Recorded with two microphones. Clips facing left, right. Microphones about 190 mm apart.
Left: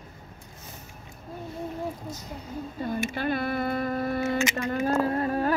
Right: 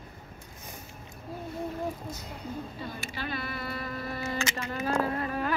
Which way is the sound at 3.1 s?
50° left (ahead or behind).